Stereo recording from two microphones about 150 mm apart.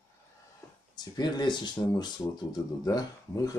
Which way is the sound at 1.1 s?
30° left (ahead or behind).